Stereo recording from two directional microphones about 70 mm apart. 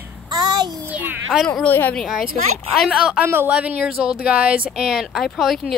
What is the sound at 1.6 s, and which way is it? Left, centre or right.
Speech, left.